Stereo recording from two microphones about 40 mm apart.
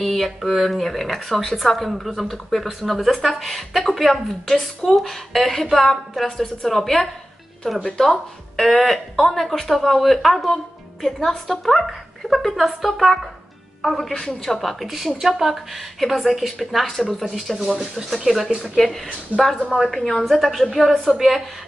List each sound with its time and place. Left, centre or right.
0.0 s a woman's voice: centre
19.3 s a woman's voice: left
19.9 s a woman's voice: centre